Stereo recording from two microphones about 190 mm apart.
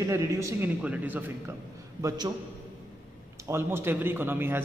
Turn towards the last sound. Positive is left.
turn(degrees=-10)  # may be behind; listen again after turning